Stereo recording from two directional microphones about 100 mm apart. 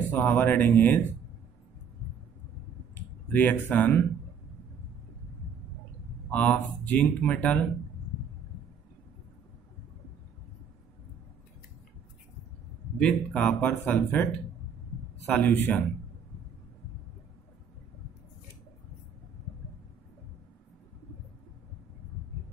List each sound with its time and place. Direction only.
0.1 s speech: 15° left (ahead or behind)
2.9 s speech: 20° left (ahead or behind)
6.3 s speech: 15° left (ahead or behind)
13.0 s speech: 10° left (ahead or behind)